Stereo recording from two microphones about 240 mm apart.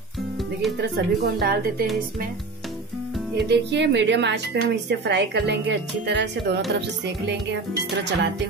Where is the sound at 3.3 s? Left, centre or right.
Right.